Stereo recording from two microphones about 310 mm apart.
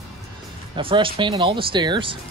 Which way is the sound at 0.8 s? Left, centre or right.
Centre.